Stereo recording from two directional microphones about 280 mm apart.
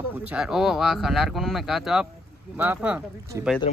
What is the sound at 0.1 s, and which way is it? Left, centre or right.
A man's voice, centre.